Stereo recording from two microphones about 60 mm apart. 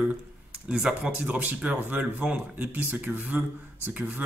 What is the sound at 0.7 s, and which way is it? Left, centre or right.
Speech, centre.